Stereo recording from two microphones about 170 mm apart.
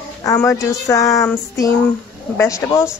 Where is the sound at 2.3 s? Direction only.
15° left (ahead or behind).